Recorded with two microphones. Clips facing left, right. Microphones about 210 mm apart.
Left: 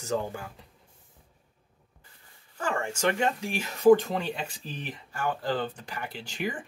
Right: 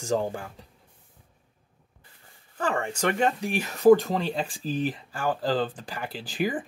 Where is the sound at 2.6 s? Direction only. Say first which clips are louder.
Right 1 dB; 35° right (ahead or behind).